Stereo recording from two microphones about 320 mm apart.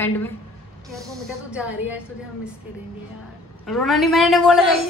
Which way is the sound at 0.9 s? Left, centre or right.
Centre.